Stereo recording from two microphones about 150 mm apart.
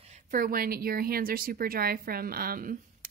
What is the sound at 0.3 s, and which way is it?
Speech, 70° right (ahead or behind).